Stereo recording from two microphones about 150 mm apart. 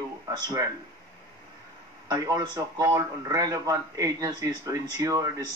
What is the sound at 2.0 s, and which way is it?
A man's voice, 25° right (ahead or behind).